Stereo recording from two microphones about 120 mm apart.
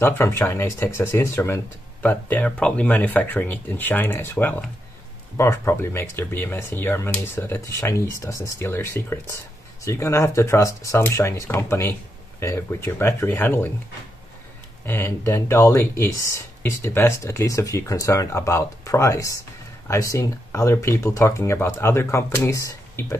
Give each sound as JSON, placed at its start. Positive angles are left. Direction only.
{"t": 0.0, "sound": "speech", "side_deg": 20}
{"t": 14.9, "sound": "speech", "side_deg": 20}